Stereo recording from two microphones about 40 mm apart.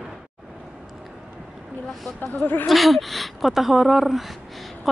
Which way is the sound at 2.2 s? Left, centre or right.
Left.